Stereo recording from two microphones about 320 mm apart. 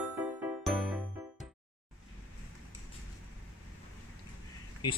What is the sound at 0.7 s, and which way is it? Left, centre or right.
Music, centre.